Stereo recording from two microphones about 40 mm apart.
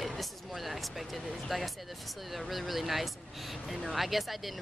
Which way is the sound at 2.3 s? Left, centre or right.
Centre.